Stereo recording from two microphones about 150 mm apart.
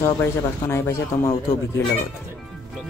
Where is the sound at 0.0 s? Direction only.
15° left (ahead or behind).